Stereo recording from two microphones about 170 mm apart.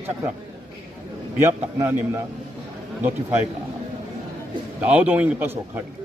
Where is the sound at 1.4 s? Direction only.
15° right (ahead or behind).